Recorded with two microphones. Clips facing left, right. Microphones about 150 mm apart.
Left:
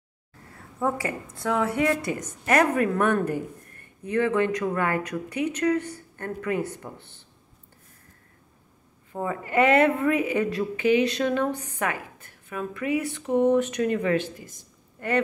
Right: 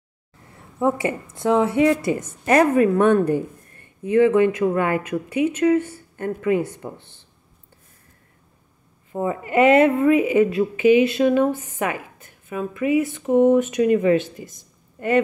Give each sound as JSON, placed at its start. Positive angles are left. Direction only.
{"t": 0.7, "sound": "a woman's voice", "side_deg": -20}
{"t": 9.1, "sound": "a woman's voice", "side_deg": -20}